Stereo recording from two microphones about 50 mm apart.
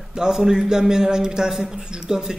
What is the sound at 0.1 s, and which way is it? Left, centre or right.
A man's voice, centre.